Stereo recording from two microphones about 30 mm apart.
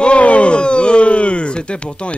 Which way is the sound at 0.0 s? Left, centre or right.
Left.